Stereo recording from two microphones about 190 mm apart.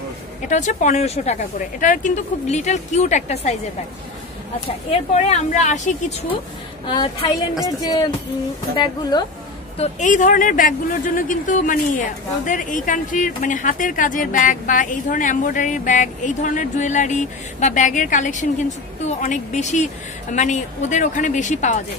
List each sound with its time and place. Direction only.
0.5 s speech: 40° left (ahead or behind)
5.1 s speech: 40° left (ahead or behind)
6.9 s a woman's voice: 25° left (ahead or behind)
9.8 s speech: 40° left (ahead or behind)